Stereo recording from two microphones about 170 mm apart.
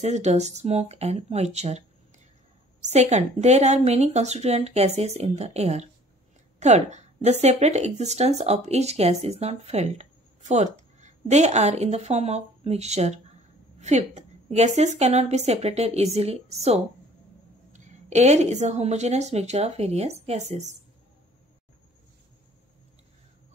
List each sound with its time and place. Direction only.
0.0 s speech: 40° right (ahead or behind)